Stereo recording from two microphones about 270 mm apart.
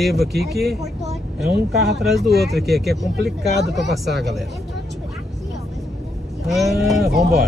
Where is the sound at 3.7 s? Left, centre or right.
Centre.